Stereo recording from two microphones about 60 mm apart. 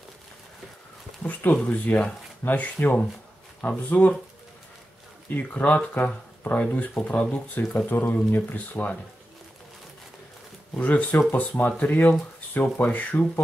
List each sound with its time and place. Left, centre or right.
1.2 s speech: left
5.3 s speech: left
10.8 s speech: left